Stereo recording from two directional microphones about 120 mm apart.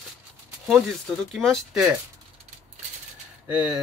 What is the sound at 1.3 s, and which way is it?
Speech, 5° left (ahead or behind).